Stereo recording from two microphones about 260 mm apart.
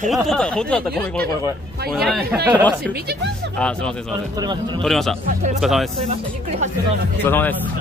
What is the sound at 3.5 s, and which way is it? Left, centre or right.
Speech, centre.